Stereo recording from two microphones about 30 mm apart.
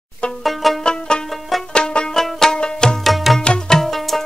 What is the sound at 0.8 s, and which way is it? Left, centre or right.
Music, left.